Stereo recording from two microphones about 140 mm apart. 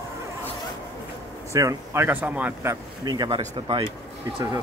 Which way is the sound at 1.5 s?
20° right (ahead or behind).